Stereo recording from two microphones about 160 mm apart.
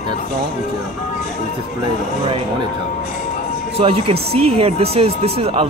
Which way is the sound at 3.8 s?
35° right (ahead or behind).